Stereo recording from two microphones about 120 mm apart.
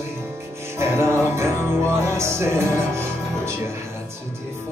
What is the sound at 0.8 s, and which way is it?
Music, 20° right (ahead or behind).